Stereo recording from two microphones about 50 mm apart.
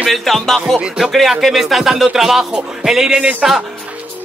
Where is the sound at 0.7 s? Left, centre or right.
Centre.